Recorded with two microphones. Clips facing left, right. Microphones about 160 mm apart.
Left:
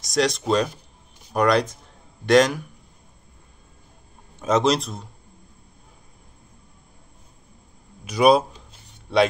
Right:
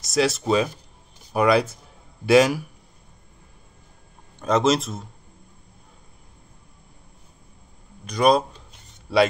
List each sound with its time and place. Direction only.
0.0 s speech: 5° right (ahead or behind)
4.4 s speech: centre (ahead or behind)
8.0 s speech: 5° left (ahead or behind)